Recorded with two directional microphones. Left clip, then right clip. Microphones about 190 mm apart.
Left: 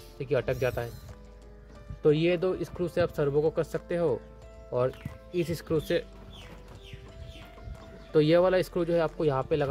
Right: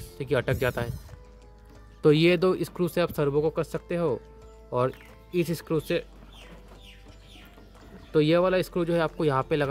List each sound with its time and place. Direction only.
0.2 s speech: 20° right (ahead or behind)
2.0 s speech: 30° right (ahead or behind); by 6.0 s 10° right (ahead or behind)
8.1 s speech: 10° right (ahead or behind)